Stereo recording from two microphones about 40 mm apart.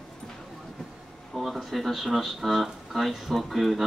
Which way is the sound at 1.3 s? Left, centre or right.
Centre.